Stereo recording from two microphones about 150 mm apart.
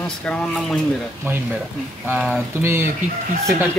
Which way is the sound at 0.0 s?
10° left (ahead or behind).